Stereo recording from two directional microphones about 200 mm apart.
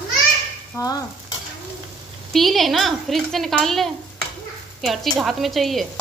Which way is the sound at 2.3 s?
Centre (ahead or behind).